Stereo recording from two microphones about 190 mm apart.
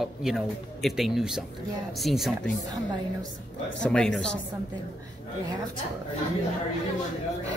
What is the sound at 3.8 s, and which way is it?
Speech, 5° left (ahead or behind).